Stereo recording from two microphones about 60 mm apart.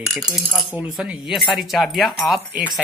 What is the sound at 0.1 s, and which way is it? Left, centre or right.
Speech, centre.